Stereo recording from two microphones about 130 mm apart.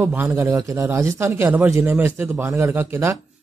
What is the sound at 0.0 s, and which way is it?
Speech, 15° right (ahead or behind).